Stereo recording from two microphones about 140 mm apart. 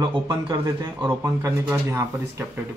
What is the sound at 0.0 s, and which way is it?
Speech, 25° right (ahead or behind).